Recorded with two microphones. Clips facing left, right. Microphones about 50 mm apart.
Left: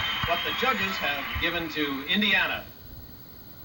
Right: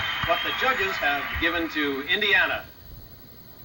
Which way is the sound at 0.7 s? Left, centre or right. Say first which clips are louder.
Right 4 dB; right.